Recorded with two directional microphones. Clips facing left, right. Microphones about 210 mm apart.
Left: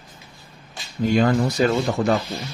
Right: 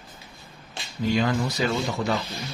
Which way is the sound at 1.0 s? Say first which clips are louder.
Left 5 dB; 50° left (ahead or behind).